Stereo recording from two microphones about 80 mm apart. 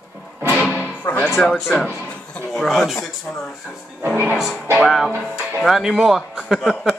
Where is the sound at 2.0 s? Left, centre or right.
Centre.